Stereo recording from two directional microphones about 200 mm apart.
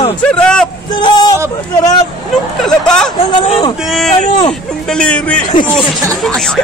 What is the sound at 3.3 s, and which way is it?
Speech, 25° left (ahead or behind).